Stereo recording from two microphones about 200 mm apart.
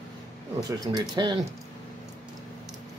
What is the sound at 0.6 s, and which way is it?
Speech, 20° right (ahead or behind).